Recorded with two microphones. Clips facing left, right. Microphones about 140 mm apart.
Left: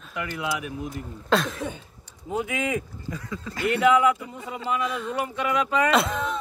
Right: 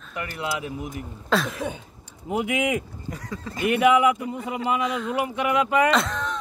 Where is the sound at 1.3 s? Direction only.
Centre (ahead or behind).